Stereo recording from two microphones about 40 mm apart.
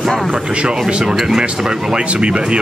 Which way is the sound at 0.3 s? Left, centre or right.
Right.